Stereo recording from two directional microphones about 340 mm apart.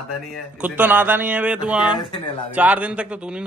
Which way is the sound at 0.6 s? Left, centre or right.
Centre.